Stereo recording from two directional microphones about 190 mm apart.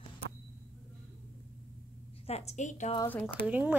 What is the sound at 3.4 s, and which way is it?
Speech, 10° right (ahead or behind).